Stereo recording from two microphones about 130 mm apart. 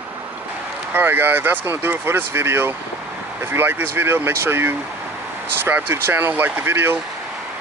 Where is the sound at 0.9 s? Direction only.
15° right (ahead or behind).